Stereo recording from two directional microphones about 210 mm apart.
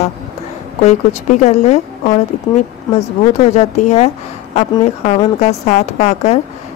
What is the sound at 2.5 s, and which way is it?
Speech, 20° left (ahead or behind).